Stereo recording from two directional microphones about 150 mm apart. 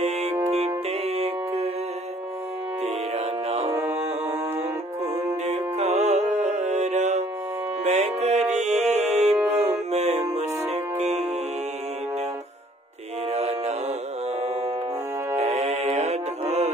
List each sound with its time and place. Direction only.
0.0 s music: 45° right (ahead or behind)
3.4 s music: 45° right (ahead or behind)
5.5 s music: 50° right (ahead or behind)
13.3 s mantra: 45° right (ahead or behind)
15.3 s music: 45° right (ahead or behind)